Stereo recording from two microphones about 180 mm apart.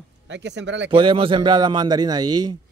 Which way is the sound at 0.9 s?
30° right (ahead or behind).